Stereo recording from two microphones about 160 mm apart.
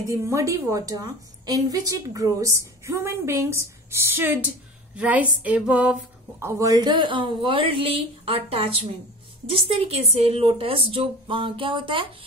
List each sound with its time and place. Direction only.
0.0 s a woman's voice: 20° right (ahead or behind)
6.4 s speech: 20° right (ahead or behind)